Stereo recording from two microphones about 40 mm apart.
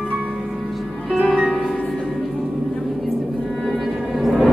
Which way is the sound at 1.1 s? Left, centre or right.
Centre.